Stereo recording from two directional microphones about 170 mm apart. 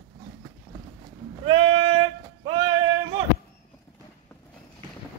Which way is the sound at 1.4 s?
35° right (ahead or behind).